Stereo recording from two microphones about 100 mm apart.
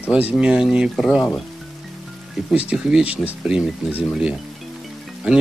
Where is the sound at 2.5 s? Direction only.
10° right (ahead or behind).